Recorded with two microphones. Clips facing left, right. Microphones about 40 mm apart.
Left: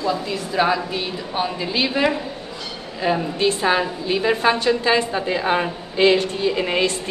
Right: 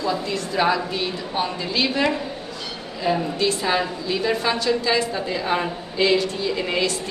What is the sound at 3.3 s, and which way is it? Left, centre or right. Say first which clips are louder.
A woman's voice: left 3 dB; left.